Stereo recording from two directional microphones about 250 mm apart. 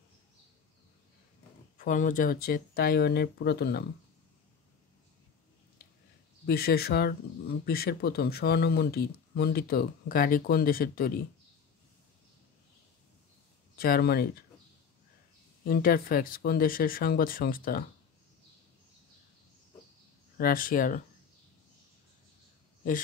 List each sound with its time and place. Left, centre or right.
1.8 s speech: left
6.4 s speech: left
13.7 s speech: left
15.6 s speech: left
20.3 s speech: left